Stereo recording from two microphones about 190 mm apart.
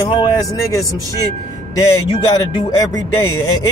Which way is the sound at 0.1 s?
20° left (ahead or behind).